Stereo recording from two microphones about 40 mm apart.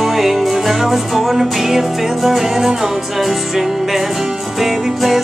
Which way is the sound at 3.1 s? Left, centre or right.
Centre.